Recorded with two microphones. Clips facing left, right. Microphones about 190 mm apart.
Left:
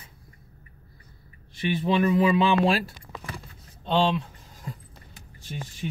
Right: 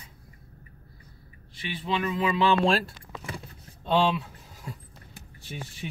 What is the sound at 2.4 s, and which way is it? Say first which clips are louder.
Speech: left 1 dB; 10° left (ahead or behind).